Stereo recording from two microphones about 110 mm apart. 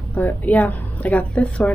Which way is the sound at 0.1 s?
15° left (ahead or behind).